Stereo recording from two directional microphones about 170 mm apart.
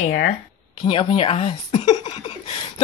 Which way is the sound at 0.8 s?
30° left (ahead or behind).